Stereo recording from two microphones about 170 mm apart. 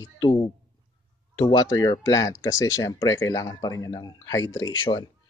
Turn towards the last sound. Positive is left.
turn(degrees=25)  # may be behind; listen again after turning